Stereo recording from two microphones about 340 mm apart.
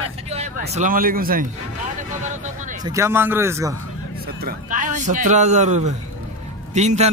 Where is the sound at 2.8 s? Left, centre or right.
Centre.